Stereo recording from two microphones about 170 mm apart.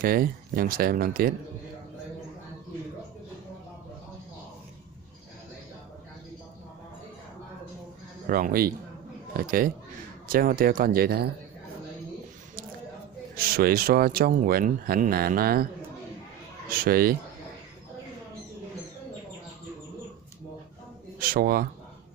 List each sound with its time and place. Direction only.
0.0 s speech: 60° right (ahead or behind)
8.3 s speech: 55° right (ahead or behind)
13.4 s speech: 60° right (ahead or behind)
21.2 s speech: 60° right (ahead or behind)